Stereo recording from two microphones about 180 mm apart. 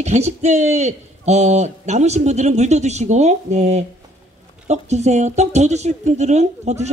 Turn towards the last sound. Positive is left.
turn(degrees=-40)  # may be behind; listen again after turning